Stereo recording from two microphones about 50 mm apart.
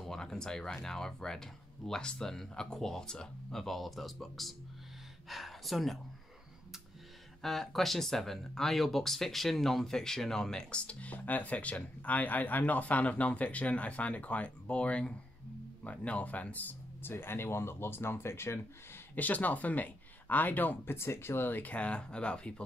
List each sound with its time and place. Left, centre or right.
0.0 s a sound: centre
0.8 s speech: centre
7.4 s speech: centre; by 16.6 s left
17.0 s speech: left
19.1 s speech: left
20.8 s speech: left
21.7 s speech: left